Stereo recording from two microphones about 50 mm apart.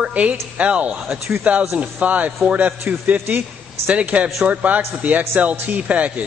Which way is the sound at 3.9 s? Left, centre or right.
Right.